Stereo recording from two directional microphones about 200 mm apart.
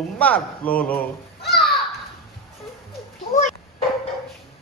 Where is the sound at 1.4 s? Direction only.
50° left (ahead or behind).